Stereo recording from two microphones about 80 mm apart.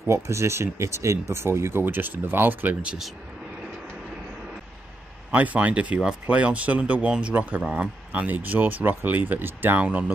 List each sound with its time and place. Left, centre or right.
0.0 s speech: right; by 3.0 s centre
5.3 s speech: centre